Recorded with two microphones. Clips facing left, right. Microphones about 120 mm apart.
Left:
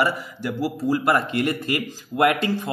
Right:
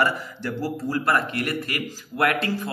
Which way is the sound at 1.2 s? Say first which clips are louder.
Left 3 dB; 20° left (ahead or behind).